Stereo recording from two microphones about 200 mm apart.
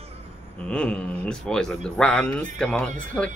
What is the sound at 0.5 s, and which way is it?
Speech, 5° left (ahead or behind).